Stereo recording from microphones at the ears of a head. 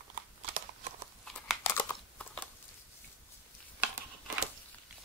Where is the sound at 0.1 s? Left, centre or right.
Right.